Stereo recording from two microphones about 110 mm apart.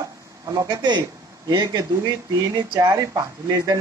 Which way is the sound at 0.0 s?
40° right (ahead or behind).